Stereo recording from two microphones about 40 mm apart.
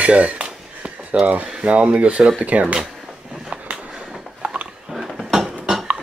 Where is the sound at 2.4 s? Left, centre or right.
Right.